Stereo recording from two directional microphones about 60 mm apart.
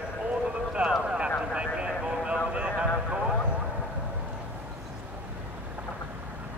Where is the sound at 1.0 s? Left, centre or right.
Centre.